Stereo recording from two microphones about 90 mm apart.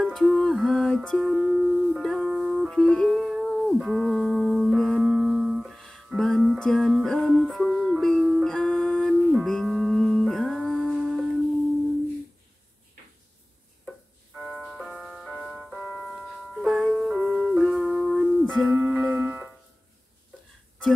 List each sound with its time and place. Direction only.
0.0 s music: 5° left (ahead or behind)
2.7 s music: 5° left (ahead or behind)
8.5 s music: 10° left (ahead or behind)
9.1 s music: centre (ahead or behind)
14.3 s music: 5° right (ahead or behind)
18.4 s music: 10° left (ahead or behind)
18.7 s music: 15° right (ahead or behind)